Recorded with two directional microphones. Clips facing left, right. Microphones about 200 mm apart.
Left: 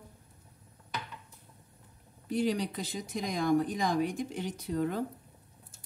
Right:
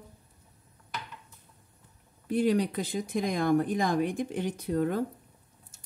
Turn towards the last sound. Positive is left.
turn(degrees=-50)  # may be behind; listen again after turning